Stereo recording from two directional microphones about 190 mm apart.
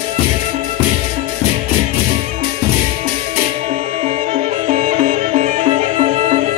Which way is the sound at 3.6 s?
35° right (ahead or behind).